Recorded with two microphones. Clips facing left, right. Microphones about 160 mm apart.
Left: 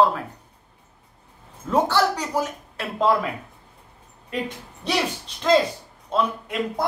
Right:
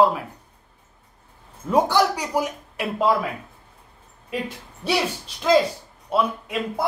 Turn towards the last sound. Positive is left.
turn(degrees=-5)  # may be behind; listen again after turning